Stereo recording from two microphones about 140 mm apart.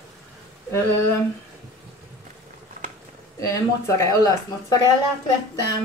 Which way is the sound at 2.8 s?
75° right (ahead or behind).